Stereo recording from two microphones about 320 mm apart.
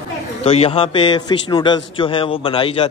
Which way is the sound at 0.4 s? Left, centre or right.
Centre.